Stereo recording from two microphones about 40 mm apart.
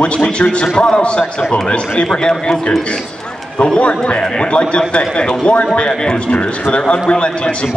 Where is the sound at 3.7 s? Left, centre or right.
Left.